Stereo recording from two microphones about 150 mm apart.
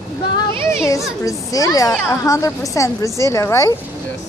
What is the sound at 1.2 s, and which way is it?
A woman's voice, 20° left (ahead or behind).